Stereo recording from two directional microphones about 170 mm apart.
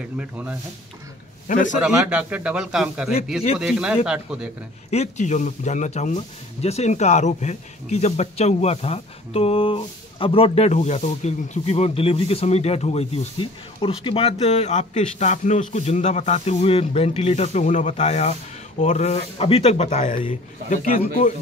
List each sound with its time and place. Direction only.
0.2 s speech: 10° right (ahead or behind)
1.5 s a man's voice: 50° left (ahead or behind)
1.8 s speech: 5° right (ahead or behind)
4.9 s speech: 40° left (ahead or behind)